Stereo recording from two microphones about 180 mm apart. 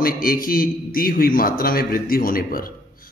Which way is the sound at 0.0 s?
55° left (ahead or behind).